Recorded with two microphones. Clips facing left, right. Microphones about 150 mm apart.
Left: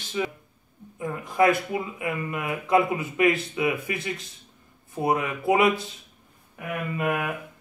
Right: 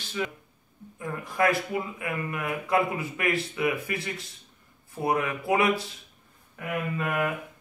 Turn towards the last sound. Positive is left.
turn(degrees=15)  # may be behind; listen again after turning